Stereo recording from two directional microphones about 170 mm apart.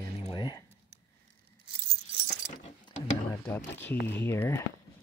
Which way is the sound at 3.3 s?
10° left (ahead or behind).